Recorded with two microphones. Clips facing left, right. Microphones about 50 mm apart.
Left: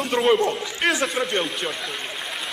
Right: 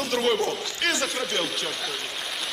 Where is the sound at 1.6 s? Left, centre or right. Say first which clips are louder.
Left 2 dB; centre.